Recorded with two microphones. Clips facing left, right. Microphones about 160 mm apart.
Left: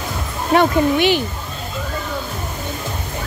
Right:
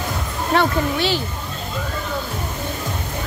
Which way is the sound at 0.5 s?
15° left (ahead or behind).